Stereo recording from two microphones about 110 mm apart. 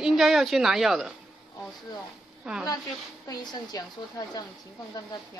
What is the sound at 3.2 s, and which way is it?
A woman's voice, 35° left (ahead or behind).